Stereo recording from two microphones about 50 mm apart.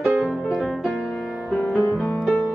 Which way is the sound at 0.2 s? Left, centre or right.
Centre.